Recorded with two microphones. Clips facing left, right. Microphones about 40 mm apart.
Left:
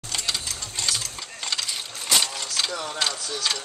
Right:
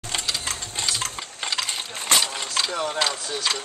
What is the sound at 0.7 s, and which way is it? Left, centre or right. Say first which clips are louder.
Engine: even; right.